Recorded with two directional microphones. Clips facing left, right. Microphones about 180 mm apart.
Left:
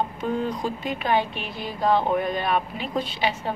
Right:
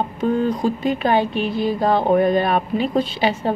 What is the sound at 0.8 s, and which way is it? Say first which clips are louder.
A woman's voice: right 5 dB; 35° right (ahead or behind).